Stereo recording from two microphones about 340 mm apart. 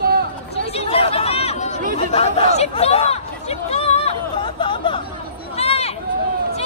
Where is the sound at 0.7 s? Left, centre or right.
Centre.